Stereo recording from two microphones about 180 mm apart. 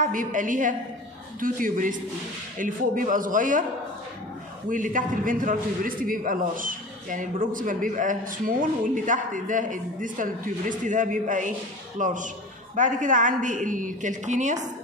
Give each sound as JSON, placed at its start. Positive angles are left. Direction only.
{"t": 0.0, "sound": "a man's voice", "side_deg": -45}
{"t": 4.6, "sound": "a man's voice", "side_deg": -45}